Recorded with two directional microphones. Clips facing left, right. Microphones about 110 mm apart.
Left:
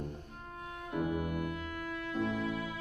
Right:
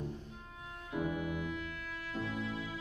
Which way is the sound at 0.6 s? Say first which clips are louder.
Left 2 dB; 60° left (ahead or behind).